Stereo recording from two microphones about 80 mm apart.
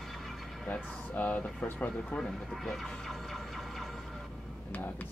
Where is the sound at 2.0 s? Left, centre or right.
Centre.